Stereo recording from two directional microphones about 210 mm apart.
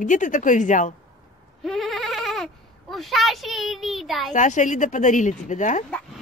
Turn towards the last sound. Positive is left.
turn(degrees=35)  # may be behind; listen again after turning